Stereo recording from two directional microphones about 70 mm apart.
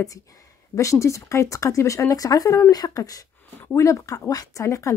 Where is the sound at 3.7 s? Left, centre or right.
Left.